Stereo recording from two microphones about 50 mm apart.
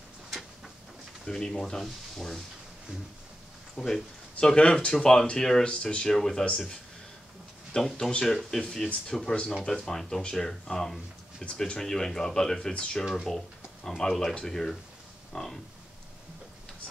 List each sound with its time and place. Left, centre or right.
1.2 s speech: centre
3.7 s speech: centre
4.4 s speech: centre
6.1 s speech: centre
7.7 s speech: centre